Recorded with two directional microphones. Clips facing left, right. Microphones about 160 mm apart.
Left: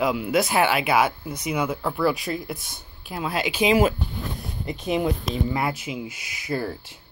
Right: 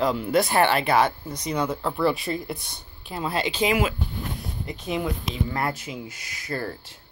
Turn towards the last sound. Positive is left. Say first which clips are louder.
# left 3 dB
turn(degrees=10)  # may be behind; listen again after turning